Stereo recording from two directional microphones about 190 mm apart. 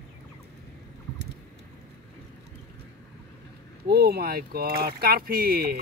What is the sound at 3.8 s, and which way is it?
Speech, 55° right (ahead or behind).